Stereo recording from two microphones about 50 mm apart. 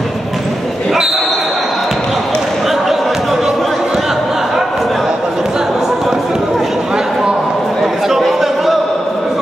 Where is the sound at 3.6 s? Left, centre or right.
Centre.